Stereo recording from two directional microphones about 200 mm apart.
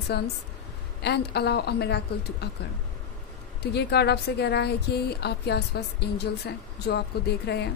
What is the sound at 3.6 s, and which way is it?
A woman's voice, 55° left (ahead or behind).